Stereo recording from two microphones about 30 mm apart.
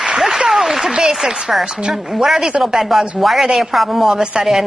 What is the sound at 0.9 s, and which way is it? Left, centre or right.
A woman's voice, right.